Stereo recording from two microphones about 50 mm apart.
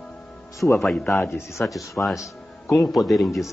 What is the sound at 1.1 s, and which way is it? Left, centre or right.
Speech, left.